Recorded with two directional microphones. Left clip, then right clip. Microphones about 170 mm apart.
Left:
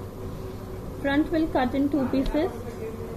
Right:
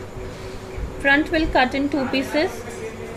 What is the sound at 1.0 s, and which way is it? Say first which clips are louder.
A woman's voice: right 7 dB; 25° right (ahead or behind).